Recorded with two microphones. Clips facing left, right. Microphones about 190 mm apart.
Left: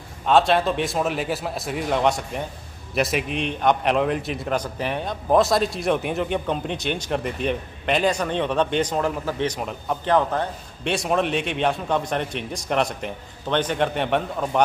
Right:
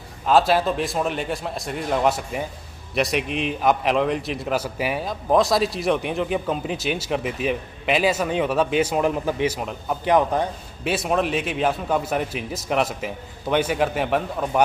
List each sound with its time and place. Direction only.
0.3 s a man's voice: 5° right (ahead or behind)
9.5 s a man's voice: centre (ahead or behind)
10.0 s a man's voice: 15° right (ahead or behind)